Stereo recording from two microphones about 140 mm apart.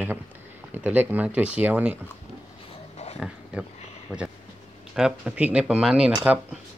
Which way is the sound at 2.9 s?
50° left (ahead or behind).